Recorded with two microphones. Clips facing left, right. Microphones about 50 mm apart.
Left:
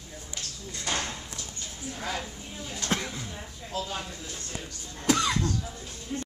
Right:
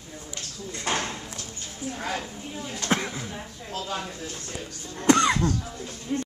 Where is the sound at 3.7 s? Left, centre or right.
Right.